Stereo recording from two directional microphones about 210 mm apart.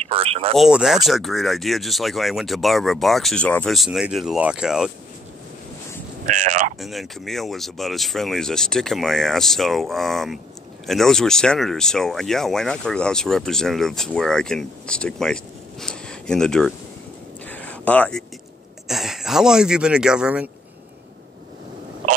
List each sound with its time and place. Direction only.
0.0 s a sound: 30° right (ahead or behind)
0.6 s speech: centre (ahead or behind)
6.2 s speech: 35° right (ahead or behind)
6.8 s speech: centre (ahead or behind)
17.5 s a sound: 5° left (ahead or behind)
18.9 s speech: centre (ahead or behind)